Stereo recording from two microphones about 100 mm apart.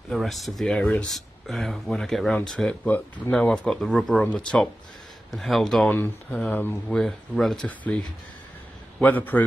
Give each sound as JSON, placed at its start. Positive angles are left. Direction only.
{"t": 0.1, "sound": "speech", "side_deg": 0}
{"t": 0.7, "sound": "speech", "side_deg": 10}
{"t": 5.9, "sound": "speech", "side_deg": 15}
{"t": 7.0, "sound": "speech", "side_deg": 5}
{"t": 7.6, "sound": "speech", "side_deg": 15}
{"t": 9.0, "sound": "speech", "side_deg": 15}